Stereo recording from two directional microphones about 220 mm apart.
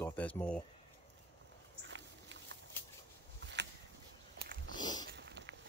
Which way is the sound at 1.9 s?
55° right (ahead or behind).